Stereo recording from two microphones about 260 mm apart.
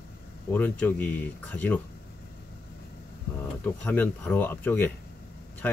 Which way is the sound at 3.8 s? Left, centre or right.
Centre.